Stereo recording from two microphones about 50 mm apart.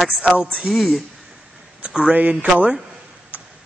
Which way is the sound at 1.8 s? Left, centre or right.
Right.